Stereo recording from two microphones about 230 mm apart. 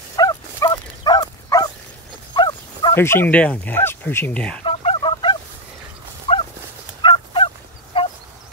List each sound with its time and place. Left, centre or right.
0.1 s dog: centre
2.3 s speech: centre
4.6 s fowl: left
6.3 s dog: left
7.0 s fowl: left